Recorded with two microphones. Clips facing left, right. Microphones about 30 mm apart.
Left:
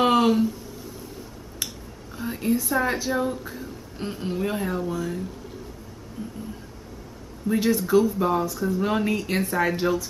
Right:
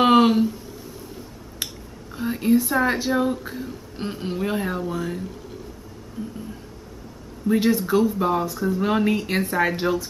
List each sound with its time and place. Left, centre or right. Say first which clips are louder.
0.0 s a sound: right 3 dB; right
2.1 s whispering: right 4 dB; centre
2.7 s speech: right 3 dB; centre
7.4 s speech: right 3 dB; centre